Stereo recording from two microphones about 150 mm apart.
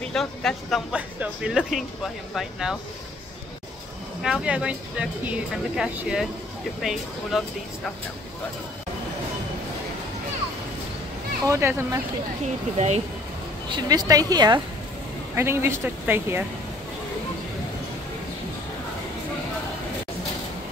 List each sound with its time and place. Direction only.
0.1 s speech: 5° left (ahead or behind)
4.2 s speech: 5° right (ahead or behind)
11.4 s a woman's voice: 20° right (ahead or behind)
12.7 s speech: 45° right (ahead or behind)
13.7 s a woman's voice: 25° right (ahead or behind)
15.3 s speech: 15° right (ahead or behind)